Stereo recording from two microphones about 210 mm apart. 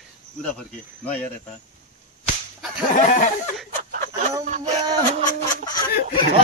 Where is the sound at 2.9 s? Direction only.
35° left (ahead or behind).